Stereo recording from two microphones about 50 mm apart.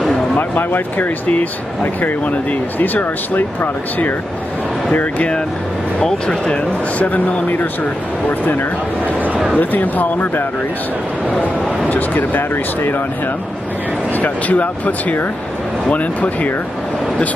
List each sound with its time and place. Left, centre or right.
0.4 s speech: left
5.9 s speech: centre
7.0 s speech: left
8.3 s speech: left
11.2 s speech: left
11.9 s speech: left
14.1 s speech: left